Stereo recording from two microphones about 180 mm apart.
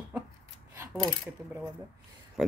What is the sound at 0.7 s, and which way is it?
Mechanisms, 15° right (ahead or behind).